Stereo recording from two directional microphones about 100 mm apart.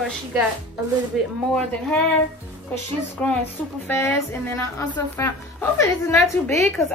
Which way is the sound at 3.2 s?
15° left (ahead or behind).